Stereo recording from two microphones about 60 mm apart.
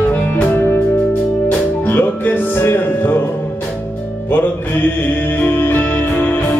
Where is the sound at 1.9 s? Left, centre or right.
Left.